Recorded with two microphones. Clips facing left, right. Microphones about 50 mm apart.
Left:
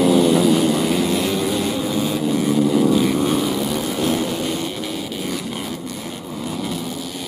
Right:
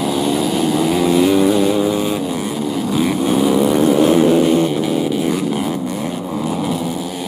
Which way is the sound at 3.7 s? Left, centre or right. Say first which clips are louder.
Right 9 dB; right.